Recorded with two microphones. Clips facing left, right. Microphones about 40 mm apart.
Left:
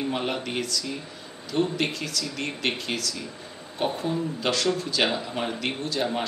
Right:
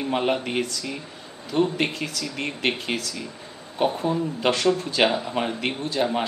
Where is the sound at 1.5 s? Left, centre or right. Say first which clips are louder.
Right 3 dB; centre.